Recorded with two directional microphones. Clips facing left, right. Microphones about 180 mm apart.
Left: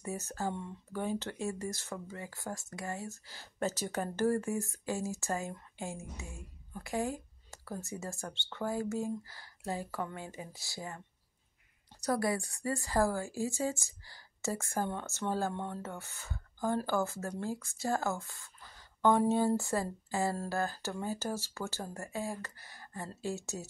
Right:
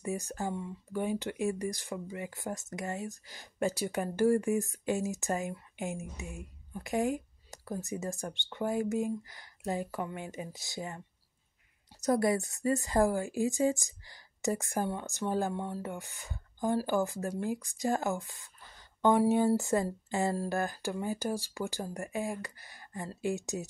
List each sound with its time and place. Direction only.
0.0 s a woman's voice: 15° right (ahead or behind)
12.0 s a woman's voice: 20° right (ahead or behind)